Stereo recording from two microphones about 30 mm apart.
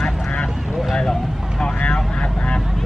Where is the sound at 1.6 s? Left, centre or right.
Left.